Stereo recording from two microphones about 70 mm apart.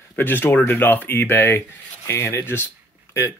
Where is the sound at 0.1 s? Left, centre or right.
Left.